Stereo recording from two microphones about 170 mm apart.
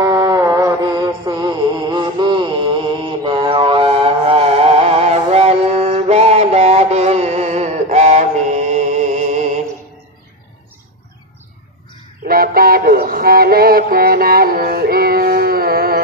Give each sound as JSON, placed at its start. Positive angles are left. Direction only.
{"t": 0.0, "sound": "music", "side_deg": -20}
{"t": 12.3, "sound": "synthetic singing", "side_deg": -60}